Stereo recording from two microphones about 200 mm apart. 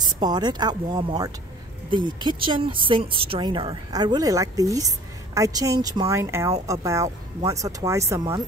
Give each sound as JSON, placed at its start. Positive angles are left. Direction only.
{"t": 0.0, "sound": "speech", "side_deg": -20}